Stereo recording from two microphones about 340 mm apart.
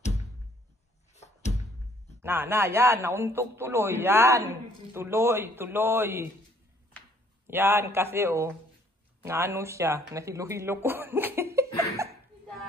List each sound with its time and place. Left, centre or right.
1.1 s music: centre
2.2 s speech: centre
7.4 s speech: centre
11.7 s laughter: centre